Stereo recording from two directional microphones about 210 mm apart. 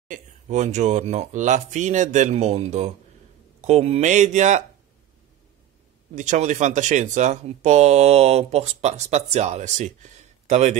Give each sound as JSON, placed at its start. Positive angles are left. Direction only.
{"t": 0.1, "sound": "speech", "side_deg": -35}
{"t": 6.1, "sound": "speech", "side_deg": -35}